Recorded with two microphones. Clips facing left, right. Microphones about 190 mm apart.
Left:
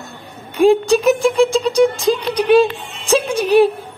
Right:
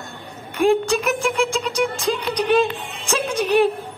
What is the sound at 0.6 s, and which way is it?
Speech, 35° left (ahead or behind).